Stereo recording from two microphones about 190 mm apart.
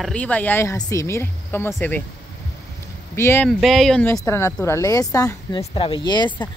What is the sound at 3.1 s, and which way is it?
Speech, 10° left (ahead or behind).